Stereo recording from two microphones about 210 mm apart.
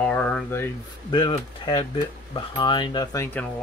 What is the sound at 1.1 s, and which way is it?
Speech, 20° left (ahead or behind).